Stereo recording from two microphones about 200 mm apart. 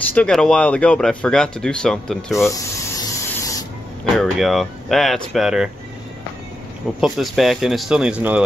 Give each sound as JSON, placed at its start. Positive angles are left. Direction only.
{"t": 0.1, "sound": "speech", "side_deg": 5}
{"t": 2.3, "sound": "spray", "side_deg": 15}
{"t": 4.2, "sound": "speech", "side_deg": 0}
{"t": 7.0, "sound": "speech", "side_deg": 0}